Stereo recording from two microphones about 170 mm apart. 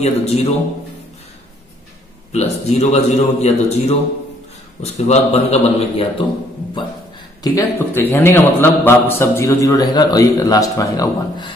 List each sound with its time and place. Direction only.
0.0 s a man's voice: 40° left (ahead or behind)
2.3 s a man's voice: 40° left (ahead or behind)
7.4 s a man's voice: 15° left (ahead or behind)